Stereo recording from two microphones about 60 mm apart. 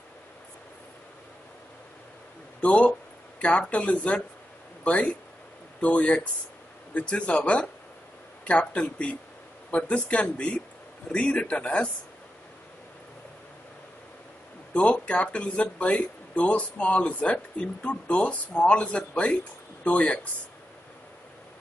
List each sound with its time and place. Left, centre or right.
2.6 s speech: left
14.7 s speech: centre